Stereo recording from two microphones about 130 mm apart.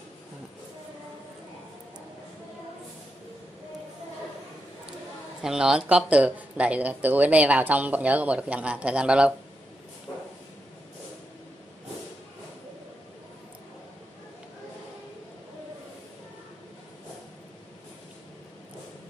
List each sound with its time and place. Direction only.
5.4 s speech: 5° right (ahead or behind)